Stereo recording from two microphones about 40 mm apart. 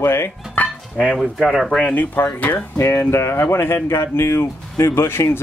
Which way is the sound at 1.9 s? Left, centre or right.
Left.